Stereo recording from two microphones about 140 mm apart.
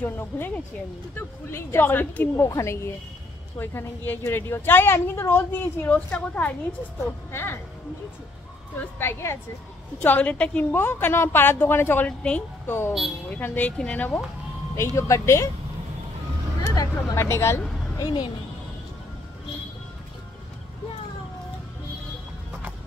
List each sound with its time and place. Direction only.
0.0 s a woman's voice: 15° left (ahead or behind)
8.9 s a woman's voice: 15° left (ahead or behind)
16.6 s speech: 20° left (ahead or behind)
17.9 s speech: 30° left (ahead or behind)